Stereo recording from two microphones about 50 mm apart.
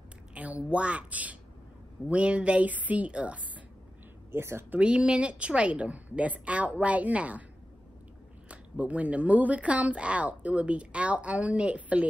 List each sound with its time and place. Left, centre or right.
0.3 s a woman's voice: right
4.3 s speech: right
4.7 s speech: centre
8.5 s speech: right